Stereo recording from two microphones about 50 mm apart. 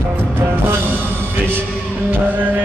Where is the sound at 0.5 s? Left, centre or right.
Right.